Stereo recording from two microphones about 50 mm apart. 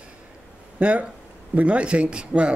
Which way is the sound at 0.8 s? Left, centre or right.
Right.